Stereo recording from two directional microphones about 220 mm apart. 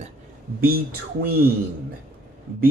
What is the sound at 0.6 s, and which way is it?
Speech, 45° right (ahead or behind).